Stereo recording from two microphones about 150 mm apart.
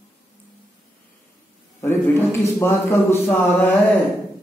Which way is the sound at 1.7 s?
15° left (ahead or behind).